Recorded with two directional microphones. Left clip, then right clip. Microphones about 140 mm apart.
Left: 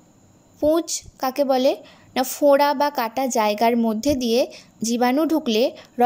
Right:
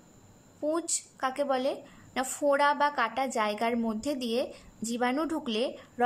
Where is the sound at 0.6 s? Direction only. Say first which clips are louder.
Left 11 dB; 25° left (ahead or behind).